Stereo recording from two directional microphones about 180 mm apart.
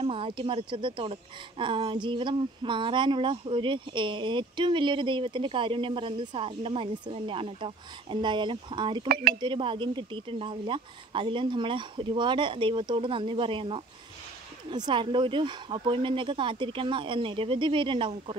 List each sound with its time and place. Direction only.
0.0 s speech: 30° right (ahead or behind)
14.9 s speech: 25° right (ahead or behind)